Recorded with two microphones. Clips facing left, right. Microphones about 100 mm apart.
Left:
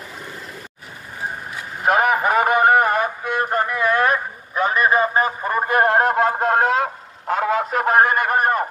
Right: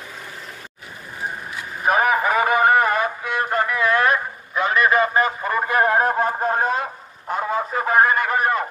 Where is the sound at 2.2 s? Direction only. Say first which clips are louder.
Left 1 dB; 55° left (ahead or behind).